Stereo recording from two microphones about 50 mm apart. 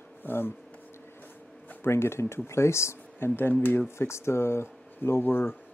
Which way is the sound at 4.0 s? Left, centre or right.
Left.